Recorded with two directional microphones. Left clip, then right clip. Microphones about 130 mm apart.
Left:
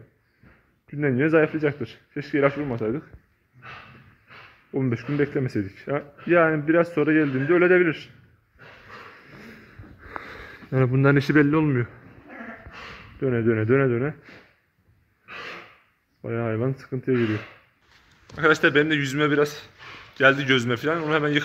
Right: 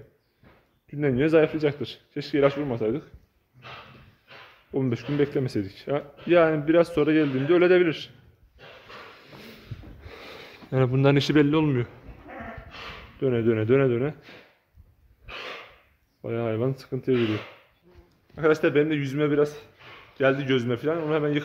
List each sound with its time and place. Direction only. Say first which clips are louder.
0.8 s a man's voice: left 1 dB; 15° right (ahead or behind)
2.6 s speech: even; 20° right (ahead or behind)
4.7 s a man's voice: even; 15° right (ahead or behind)
9.3 s sniff: even; centre (ahead or behind)
13.2 s a man's voice: left 1 dB; 20° right (ahead or behind)
16.2 s a man's voice: even; 15° right (ahead or behind)
18.3 s a man's voice: left 3 dB; centre (ahead or behind)